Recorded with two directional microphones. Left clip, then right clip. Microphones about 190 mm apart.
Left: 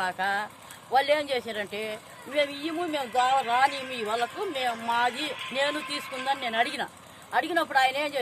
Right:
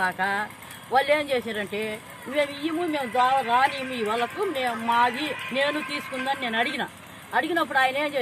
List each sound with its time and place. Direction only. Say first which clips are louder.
0.0 s speech: right 3 dB; 30° left (ahead or behind)